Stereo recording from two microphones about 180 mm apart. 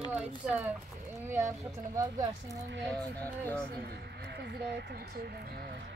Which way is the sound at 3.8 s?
65° right (ahead or behind).